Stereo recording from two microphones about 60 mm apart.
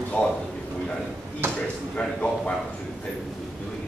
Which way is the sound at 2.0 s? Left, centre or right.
Centre.